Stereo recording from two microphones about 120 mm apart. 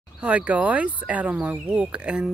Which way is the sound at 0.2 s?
10° right (ahead or behind).